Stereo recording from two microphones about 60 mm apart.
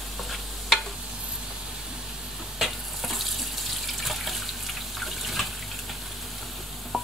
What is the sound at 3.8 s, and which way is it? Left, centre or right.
Water, centre.